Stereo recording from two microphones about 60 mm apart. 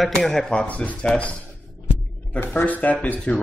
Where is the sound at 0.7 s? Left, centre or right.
Left.